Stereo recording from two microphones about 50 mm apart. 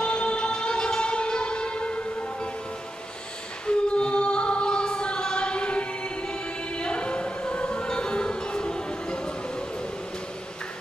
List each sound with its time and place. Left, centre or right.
0.0 s music: left
3.6 s choir: left